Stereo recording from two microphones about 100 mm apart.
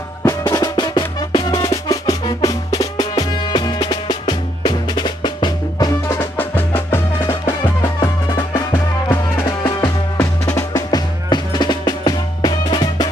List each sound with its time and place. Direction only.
0.2 s music: 35° left (ahead or behind)
6.0 s music: 20° left (ahead or behind)
7.8 s music: 35° left (ahead or behind)
9.8 s music: 30° left (ahead or behind)
11.2 s music: 50° left (ahead or behind)